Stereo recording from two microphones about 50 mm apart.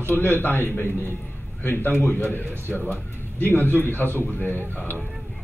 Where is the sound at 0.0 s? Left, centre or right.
Left.